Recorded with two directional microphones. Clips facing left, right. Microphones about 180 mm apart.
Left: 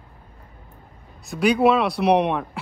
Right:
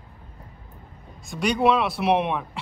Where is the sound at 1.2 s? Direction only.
Centre (ahead or behind).